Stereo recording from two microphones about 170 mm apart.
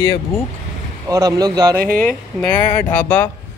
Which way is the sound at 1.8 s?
55° right (ahead or behind).